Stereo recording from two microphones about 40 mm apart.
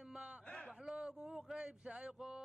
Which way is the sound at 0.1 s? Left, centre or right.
Right.